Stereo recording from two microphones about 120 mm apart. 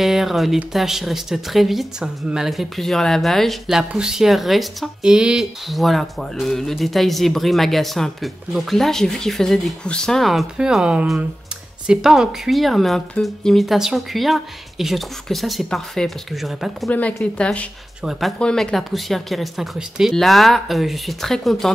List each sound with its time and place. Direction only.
0.0 s speech: centre (ahead or behind)
16.9 s a woman's voice: 10° left (ahead or behind)